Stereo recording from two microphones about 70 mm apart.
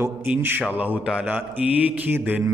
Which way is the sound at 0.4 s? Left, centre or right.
Right.